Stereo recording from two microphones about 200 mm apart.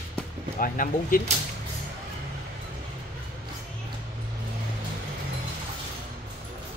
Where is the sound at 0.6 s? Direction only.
45° left (ahead or behind).